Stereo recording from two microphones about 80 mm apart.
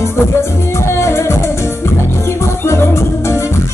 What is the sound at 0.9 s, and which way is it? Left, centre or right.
Music, left.